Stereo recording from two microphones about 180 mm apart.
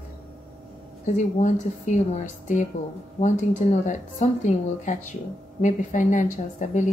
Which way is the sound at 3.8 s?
45° left (ahead or behind).